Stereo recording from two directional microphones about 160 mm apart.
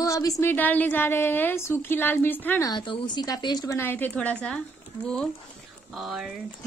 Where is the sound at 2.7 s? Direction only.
30° left (ahead or behind).